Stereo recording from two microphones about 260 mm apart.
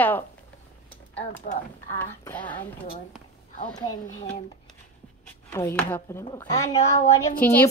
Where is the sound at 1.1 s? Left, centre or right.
Left.